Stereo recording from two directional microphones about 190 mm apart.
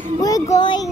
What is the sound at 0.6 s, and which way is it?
Speech, 25° left (ahead or behind).